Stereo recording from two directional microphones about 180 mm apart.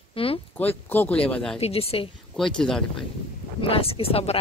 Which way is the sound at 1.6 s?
35° left (ahead or behind).